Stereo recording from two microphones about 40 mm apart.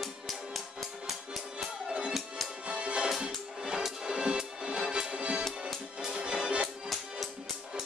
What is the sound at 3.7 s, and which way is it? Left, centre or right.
Music, centre.